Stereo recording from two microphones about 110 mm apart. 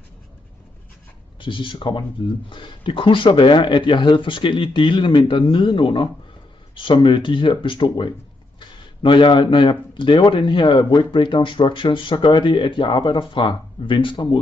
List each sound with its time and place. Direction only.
1.4 s speech: 50° left (ahead or behind)